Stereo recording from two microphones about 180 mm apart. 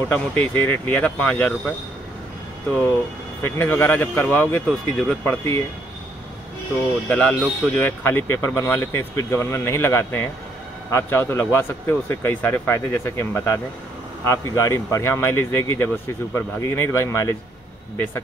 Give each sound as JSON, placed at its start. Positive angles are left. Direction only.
{"t": 0.1, "sound": "a man's voice", "side_deg": 10}
{"t": 3.4, "sound": "a man's voice", "side_deg": 10}
{"t": 7.1, "sound": "a man's voice", "side_deg": 5}